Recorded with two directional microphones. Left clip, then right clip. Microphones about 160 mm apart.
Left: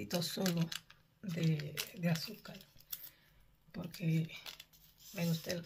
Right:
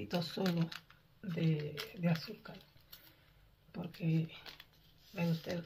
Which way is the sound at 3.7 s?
15° left (ahead or behind).